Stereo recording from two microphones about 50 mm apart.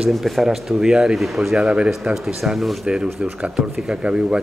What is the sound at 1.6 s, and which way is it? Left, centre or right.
Speech, centre.